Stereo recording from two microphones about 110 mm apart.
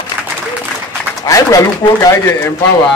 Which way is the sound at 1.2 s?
30° left (ahead or behind).